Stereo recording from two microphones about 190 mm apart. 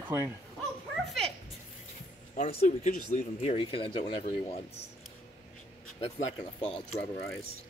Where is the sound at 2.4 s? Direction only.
35° left (ahead or behind).